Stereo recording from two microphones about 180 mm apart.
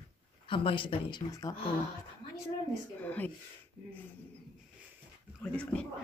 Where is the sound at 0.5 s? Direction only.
30° left (ahead or behind).